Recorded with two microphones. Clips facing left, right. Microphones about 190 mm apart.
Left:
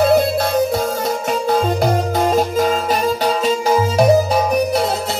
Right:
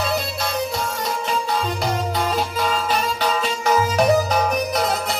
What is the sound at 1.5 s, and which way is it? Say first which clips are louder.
Music: left 11 dB; 50° left (ahead or behind).